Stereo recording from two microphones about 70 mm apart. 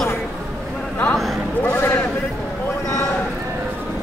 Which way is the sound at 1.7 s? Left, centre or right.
Left.